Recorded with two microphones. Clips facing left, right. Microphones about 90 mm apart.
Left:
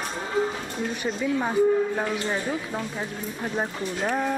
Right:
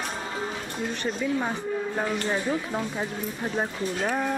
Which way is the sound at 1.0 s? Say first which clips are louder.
Left 1 dB; 10° left (ahead or behind).